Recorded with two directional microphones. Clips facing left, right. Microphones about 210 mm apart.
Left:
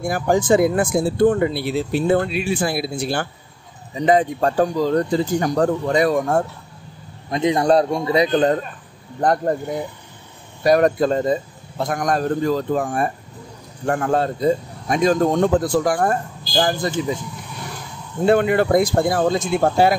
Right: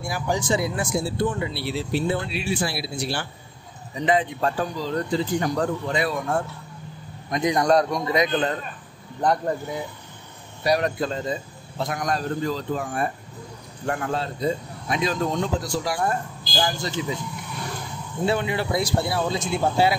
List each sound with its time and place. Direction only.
0.0 s speech: 50° left (ahead or behind)
7.2 s a man's voice: 25° left (ahead or behind)
9.2 s speech: 50° left (ahead or behind)
10.6 s speech: 50° left (ahead or behind)
18.2 s speech: 55° left (ahead or behind)